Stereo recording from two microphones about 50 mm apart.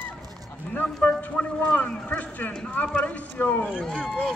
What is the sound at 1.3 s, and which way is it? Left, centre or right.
Speech, centre.